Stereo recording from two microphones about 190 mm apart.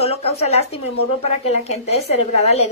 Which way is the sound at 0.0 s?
30° left (ahead or behind).